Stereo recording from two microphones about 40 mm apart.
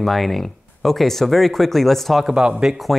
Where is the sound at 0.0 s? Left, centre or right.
Centre.